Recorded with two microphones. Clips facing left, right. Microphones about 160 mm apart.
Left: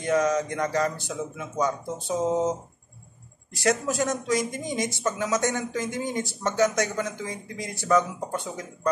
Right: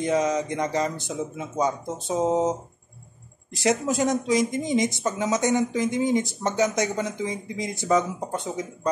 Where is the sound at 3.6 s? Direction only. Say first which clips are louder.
Right 2 dB; 20° right (ahead or behind).